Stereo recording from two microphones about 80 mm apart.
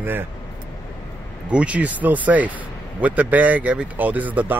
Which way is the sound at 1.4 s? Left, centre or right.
Centre.